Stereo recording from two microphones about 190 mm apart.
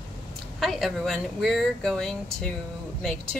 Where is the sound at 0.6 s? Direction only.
Centre (ahead or behind).